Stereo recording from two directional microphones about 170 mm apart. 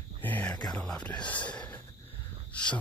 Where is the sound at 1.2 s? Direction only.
30° left (ahead or behind).